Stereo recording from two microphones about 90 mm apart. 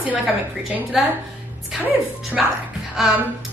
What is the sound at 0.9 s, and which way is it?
Speech, 5° right (ahead or behind).